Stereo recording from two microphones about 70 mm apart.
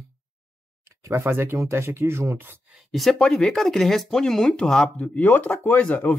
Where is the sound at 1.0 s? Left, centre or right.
Right.